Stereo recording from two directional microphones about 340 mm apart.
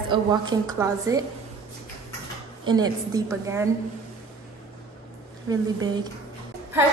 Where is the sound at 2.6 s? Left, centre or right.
Centre.